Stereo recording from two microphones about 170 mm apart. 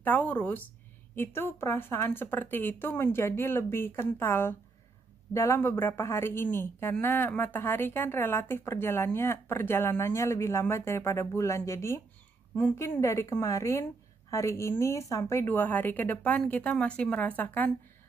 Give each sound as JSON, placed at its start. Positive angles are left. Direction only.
{"t": 0.0, "sound": "a woman's voice", "side_deg": 10}